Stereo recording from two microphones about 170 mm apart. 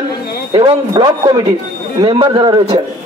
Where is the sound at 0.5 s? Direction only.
25° right (ahead or behind).